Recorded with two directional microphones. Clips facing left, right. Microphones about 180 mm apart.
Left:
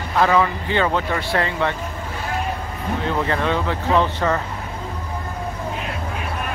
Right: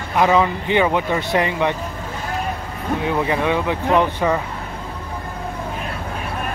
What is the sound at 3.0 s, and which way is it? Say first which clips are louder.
Speech: right 2 dB; 15° right (ahead or behind).